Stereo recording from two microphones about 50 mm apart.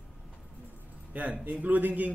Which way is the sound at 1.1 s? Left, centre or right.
Right.